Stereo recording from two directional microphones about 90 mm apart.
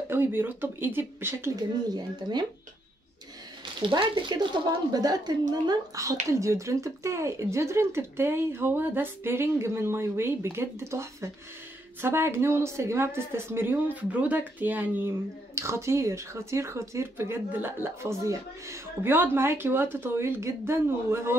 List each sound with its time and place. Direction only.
0.1 s a woman's voice: 25° right (ahead or behind)
2.0 s a woman's voice: 50° right (ahead or behind)
3.8 s a woman's voice: 60° right (ahead or behind)
6.0 s a woman's voice: 35° right (ahead or behind)
15.5 s a woman's voice: 30° right (ahead or behind)